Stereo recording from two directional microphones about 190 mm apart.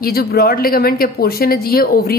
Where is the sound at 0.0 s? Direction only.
50° left (ahead or behind).